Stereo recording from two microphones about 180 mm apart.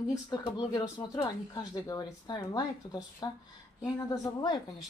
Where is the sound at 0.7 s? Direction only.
25° left (ahead or behind).